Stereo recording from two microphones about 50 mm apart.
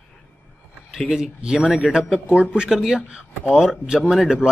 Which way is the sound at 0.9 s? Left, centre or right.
Centre.